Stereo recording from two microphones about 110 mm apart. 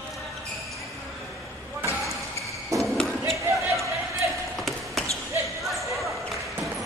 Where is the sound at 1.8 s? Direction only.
25° left (ahead or behind).